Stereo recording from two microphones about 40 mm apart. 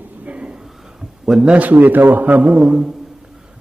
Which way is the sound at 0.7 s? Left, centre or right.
Centre.